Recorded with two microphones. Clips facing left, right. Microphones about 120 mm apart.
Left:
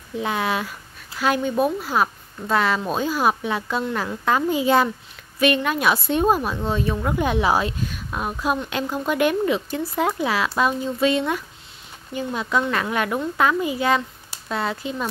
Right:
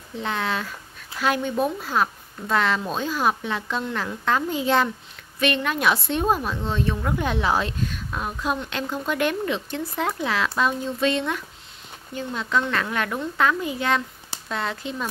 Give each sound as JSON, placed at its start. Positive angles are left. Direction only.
{"t": 0.2, "sound": "speech", "side_deg": 10}